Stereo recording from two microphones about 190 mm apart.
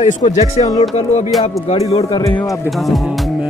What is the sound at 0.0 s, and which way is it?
Speech, 40° left (ahead or behind).